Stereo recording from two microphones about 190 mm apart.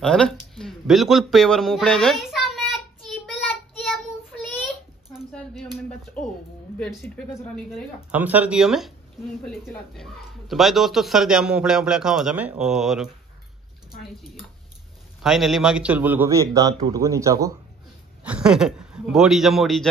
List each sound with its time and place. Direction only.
0.0 s a sound: 5° left (ahead or behind)
5.3 s a sound: 5° left (ahead or behind)
6.2 s a man's voice: 5° left (ahead or behind)
10.5 s a man's voice: centre (ahead or behind)
15.2 s a man's voice: centre (ahead or behind)
18.2 s a man's voice: 5° right (ahead or behind)